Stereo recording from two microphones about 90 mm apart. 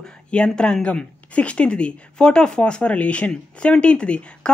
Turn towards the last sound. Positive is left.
turn(degrees=10)  # may be behind; listen again after turning